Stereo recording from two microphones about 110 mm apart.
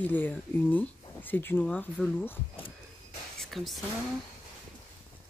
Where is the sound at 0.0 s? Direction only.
15° left (ahead or behind).